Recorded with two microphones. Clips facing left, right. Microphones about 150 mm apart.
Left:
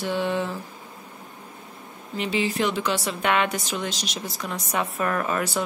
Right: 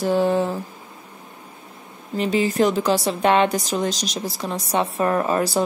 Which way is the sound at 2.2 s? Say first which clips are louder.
Right 6 dB; 40° right (ahead or behind).